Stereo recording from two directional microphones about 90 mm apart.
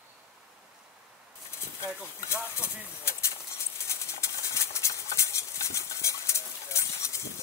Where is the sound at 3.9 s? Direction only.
35° left (ahead or behind).